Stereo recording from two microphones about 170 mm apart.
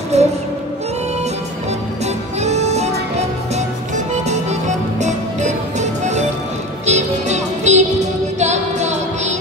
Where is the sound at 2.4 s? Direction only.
40° right (ahead or behind).